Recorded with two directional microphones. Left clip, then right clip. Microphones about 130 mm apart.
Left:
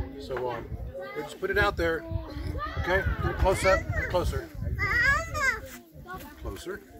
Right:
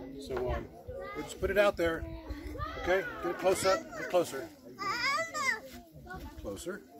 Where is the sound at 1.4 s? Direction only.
40° right (ahead or behind).